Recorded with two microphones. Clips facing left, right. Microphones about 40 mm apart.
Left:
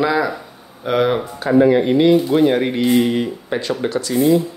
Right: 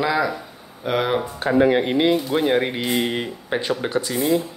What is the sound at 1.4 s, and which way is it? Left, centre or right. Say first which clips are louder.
Speech: left 4 dB; right.